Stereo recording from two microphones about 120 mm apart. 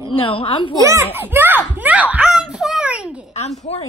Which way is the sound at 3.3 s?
60° left (ahead or behind).